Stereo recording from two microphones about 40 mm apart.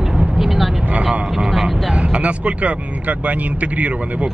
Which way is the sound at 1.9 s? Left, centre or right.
Right.